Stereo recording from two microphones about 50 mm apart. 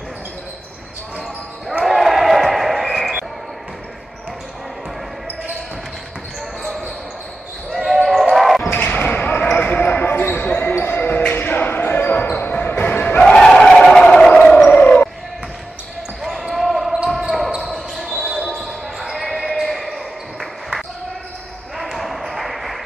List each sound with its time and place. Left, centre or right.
1.9 s basketball bounce: centre
7.7 s basketball bounce: centre
8.7 s basketball bounce: left
10.7 s basketball bounce: left
13.2 s a sound: centre
14.1 s music: centre
14.7 s a sound: left
16.2 s basketball bounce: centre